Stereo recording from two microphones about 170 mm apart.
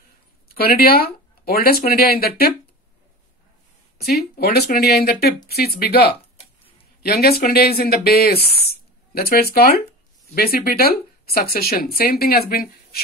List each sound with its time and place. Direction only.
0.6 s speech: 60° left (ahead or behind)
4.0 s speech: 65° left (ahead or behind)